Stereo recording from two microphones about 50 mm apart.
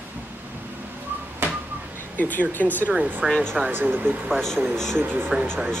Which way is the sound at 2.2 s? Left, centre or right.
Left.